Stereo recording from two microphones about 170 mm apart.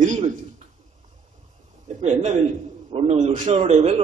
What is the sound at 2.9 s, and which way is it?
A man's voice, 35° right (ahead or behind).